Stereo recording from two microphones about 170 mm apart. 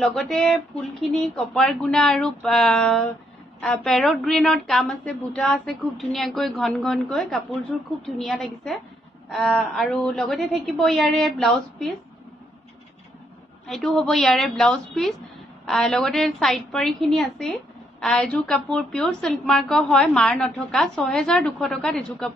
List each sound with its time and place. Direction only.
0.0 s a woman's voice: centre (ahead or behind)
13.7 s a woman's voice: centre (ahead or behind)